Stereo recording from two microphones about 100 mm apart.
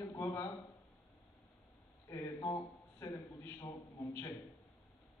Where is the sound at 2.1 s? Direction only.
30° left (ahead or behind).